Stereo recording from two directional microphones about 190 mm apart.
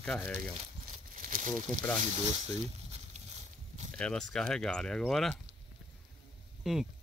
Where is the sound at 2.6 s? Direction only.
30° right (ahead or behind).